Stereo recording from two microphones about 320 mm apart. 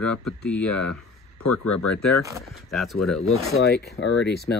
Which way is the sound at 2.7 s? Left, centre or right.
Centre.